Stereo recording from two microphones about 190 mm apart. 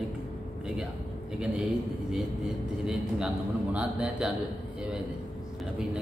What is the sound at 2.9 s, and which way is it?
A man's voice, 5° right (ahead or behind).